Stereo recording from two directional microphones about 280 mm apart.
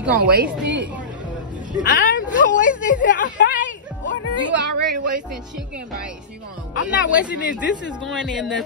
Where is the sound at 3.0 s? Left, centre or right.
Left.